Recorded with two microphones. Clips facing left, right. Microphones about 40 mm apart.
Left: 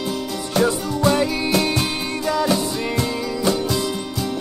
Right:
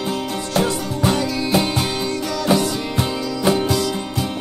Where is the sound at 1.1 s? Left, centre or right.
Left.